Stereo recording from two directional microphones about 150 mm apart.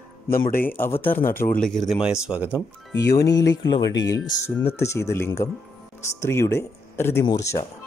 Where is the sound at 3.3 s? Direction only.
25° left (ahead or behind).